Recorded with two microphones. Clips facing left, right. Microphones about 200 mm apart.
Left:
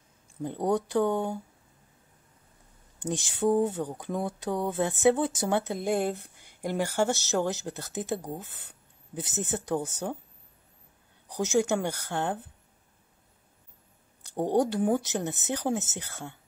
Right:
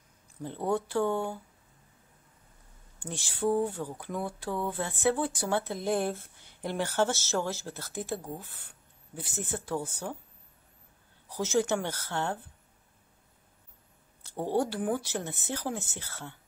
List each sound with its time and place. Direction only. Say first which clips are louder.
0.4 s speech: left 3 dB; 15° left (ahead or behind)
3.0 s speech: left 4 dB; 20° left (ahead or behind)
11.2 s speech: left 2 dB; 15° left (ahead or behind)
14.2 s speech: left 4 dB; 15° left (ahead or behind)